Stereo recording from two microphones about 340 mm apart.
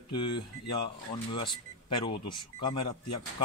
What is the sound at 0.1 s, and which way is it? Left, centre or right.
Speech, centre.